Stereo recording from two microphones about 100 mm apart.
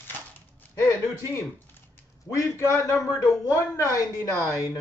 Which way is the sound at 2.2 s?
30° left (ahead or behind).